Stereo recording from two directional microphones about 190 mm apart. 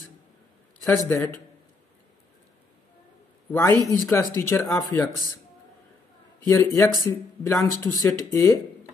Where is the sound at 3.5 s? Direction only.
10° left (ahead or behind).